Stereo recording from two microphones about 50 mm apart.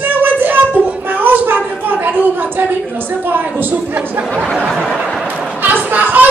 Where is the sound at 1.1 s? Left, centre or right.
Right.